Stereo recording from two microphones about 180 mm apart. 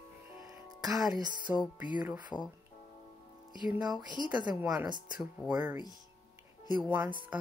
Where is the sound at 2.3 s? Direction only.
10° left (ahead or behind).